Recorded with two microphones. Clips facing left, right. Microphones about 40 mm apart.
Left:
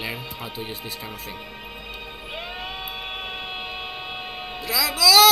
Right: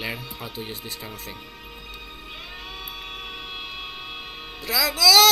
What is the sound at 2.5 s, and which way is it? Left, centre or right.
Music, left.